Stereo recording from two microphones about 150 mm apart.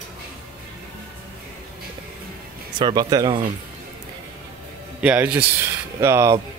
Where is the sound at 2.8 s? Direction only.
30° right (ahead or behind).